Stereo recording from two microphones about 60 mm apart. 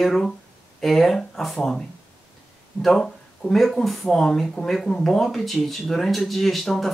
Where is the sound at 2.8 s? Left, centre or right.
Centre.